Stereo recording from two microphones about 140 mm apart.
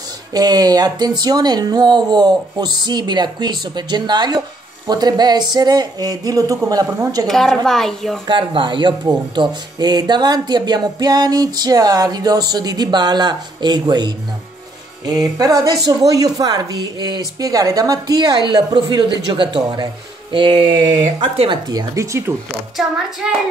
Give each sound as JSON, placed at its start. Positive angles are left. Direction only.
{"t": 0.3, "sound": "speech", "side_deg": -30}
{"t": 7.2, "sound": "a woman's voice", "side_deg": 0}
{"t": 8.3, "sound": "speech", "side_deg": -35}
{"t": 22.8, "sound": "a woman's voice", "side_deg": -5}